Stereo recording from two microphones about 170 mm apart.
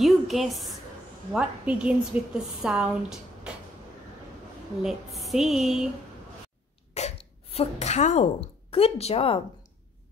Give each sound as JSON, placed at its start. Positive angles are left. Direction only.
{"t": 0.0, "sound": "a woman's voice", "side_deg": 0}
{"t": 4.8, "sound": "a woman's voice", "side_deg": 0}
{"t": 6.9, "sound": "speech", "side_deg": 40}